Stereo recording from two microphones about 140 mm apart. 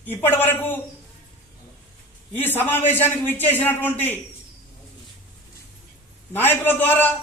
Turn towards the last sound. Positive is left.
turn(degrees=15)  # may be behind; listen again after turning